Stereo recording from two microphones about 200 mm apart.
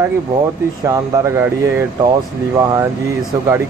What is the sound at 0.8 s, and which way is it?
Speech, 15° right (ahead or behind).